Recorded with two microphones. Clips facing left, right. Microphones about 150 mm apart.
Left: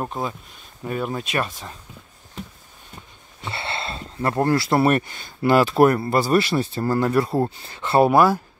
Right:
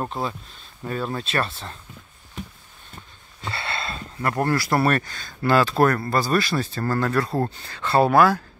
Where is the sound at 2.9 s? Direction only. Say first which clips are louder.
Left 1 dB; 20° left (ahead or behind).